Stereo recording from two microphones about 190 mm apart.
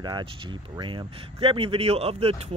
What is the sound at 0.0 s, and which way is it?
Speech, 25° right (ahead or behind).